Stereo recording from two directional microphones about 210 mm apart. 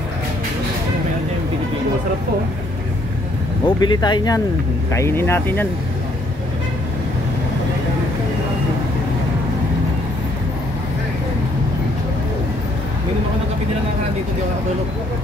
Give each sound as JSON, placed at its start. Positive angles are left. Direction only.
{"t": 3.6, "sound": "speech", "side_deg": 20}